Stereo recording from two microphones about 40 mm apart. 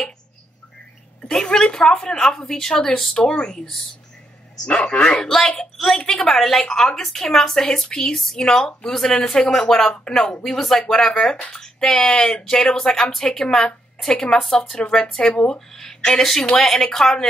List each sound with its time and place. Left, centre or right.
1.4 s speech: centre
4.6 s a woman's voice: centre
10.4 s a woman's voice: centre; by 15.6 s left
15.7 s a woman's voice: centre